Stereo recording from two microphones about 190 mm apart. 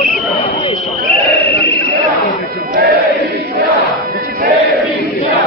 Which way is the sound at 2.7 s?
55° right (ahead or behind).